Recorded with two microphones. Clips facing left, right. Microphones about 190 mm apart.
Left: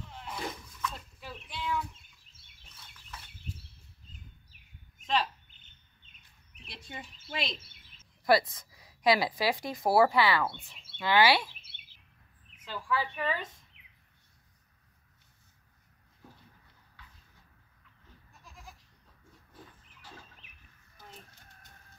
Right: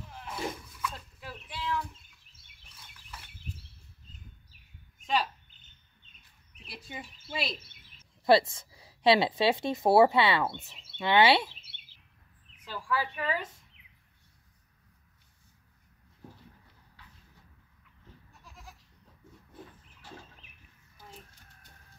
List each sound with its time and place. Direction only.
0.0 s a sound: 5° right (ahead or behind)
5.0 s a sound: 5° right (ahead or behind)
6.6 s bird: 5° right (ahead or behind)
8.3 s speech: 25° right (ahead or behind)
11.7 s bird: 50° left (ahead or behind)
12.8 s a woman's voice: 10° right (ahead or behind)